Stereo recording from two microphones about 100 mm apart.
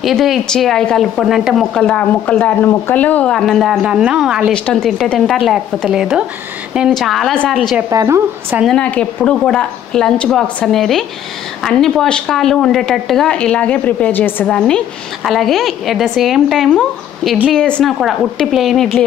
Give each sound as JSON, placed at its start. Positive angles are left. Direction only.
{"t": 0.0, "sound": "a woman's voice", "side_deg": 0}
{"t": 3.3, "sound": "speech", "side_deg": 5}
{"t": 5.9, "sound": "speech", "side_deg": -5}
{"t": 7.9, "sound": "a woman's voice", "side_deg": -35}
{"t": 8.6, "sound": "a woman's voice", "side_deg": 10}